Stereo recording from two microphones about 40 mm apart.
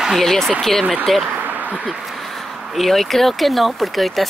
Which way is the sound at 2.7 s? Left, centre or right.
Centre.